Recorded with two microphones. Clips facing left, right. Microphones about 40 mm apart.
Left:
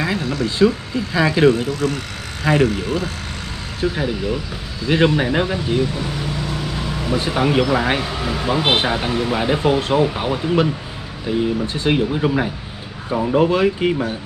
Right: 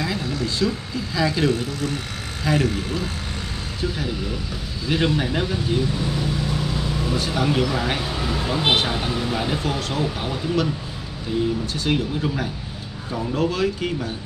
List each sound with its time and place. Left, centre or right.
0.6 s speech: left
1.8 s speech: left
2.4 s speech: left
4.8 s speech: left
7.2 s speech: left